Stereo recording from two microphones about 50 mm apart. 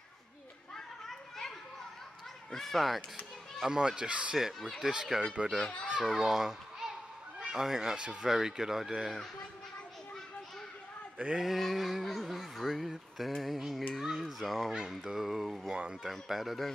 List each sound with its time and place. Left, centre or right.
0.7 s children playing: centre
2.5 s speech: centre
3.6 s speech: centre
4.3 s speech: centre
4.8 s a child's voice: centre
6.0 s a child's voice: centre
11.3 s speech: centre
14.7 s speech: centre
15.7 s speech: centre
16.1 s speech: centre